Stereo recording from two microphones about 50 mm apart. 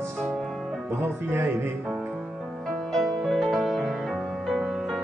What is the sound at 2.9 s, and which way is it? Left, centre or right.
Music, centre.